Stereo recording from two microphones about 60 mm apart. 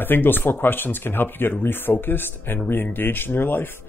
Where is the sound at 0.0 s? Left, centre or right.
Left.